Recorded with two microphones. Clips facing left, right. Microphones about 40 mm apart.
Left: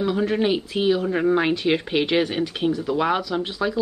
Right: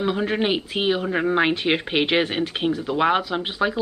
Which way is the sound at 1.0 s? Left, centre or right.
Centre.